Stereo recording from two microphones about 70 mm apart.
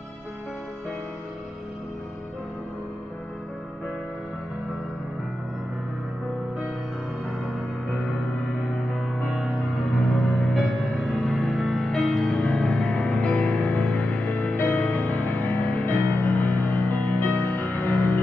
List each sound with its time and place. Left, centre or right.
8.9 s music: centre
12.4 s music: centre; by 18.2 s left